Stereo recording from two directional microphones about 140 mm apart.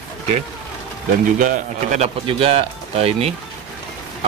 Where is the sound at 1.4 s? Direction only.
60° right (ahead or behind).